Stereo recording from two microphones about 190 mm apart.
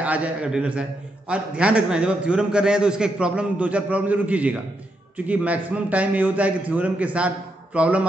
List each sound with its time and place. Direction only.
0.0 s a man's voice: 5° right (ahead or behind)